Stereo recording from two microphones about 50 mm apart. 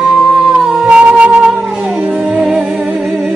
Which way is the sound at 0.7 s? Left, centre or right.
Centre.